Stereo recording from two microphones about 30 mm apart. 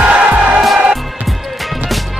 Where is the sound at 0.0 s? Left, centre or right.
Right.